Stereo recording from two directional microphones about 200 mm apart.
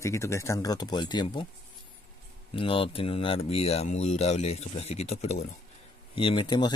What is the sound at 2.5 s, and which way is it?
Speech, 25° left (ahead or behind).